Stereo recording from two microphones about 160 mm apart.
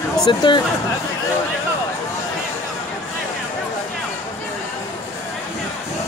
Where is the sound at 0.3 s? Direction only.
30° left (ahead or behind).